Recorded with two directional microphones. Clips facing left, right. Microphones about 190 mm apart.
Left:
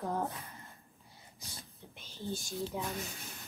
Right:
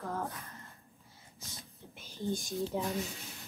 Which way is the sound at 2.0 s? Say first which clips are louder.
Right 4 dB; 15° right (ahead or behind).